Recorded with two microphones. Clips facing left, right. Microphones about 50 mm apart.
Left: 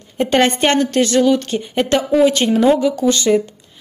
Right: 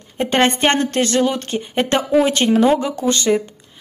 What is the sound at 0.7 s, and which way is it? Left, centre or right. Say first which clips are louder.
Speech: left 2 dB; right.